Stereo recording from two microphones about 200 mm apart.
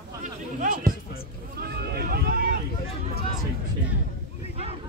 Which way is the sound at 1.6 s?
50° right (ahead or behind).